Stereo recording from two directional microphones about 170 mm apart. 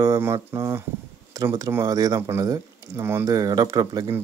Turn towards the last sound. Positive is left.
turn(degrees=-20)  # may be behind; listen again after turning